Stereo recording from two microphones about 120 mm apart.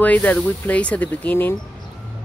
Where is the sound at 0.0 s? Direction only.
15° left (ahead or behind).